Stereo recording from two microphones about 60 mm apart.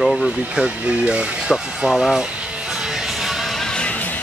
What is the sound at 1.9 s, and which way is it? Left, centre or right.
Speech, centre.